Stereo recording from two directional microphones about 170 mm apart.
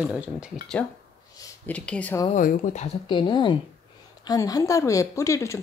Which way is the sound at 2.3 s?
45° left (ahead or behind).